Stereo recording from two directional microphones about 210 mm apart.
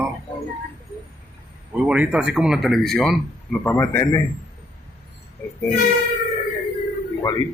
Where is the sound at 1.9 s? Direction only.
5° right (ahead or behind); by 4.2 s 15° left (ahead or behind).